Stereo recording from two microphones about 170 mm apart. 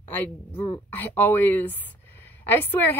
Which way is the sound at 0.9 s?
10° left (ahead or behind).